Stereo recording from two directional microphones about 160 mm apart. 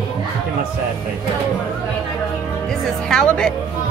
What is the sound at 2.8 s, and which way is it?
Speech, 5° left (ahead or behind).